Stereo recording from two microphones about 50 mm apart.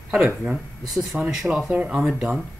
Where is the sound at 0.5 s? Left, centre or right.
Centre.